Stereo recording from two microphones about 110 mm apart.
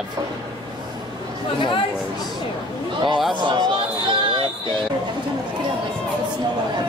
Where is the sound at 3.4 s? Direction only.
45° right (ahead or behind).